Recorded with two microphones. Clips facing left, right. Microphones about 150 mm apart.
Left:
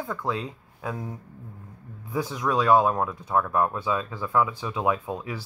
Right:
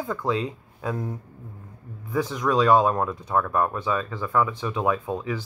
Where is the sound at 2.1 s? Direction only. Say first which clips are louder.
Right 3 dB; 10° left (ahead or behind).